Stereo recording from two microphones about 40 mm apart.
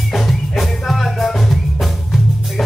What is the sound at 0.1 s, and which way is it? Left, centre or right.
Music, centre.